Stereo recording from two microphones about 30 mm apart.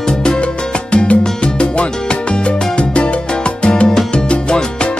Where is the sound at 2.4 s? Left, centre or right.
Left.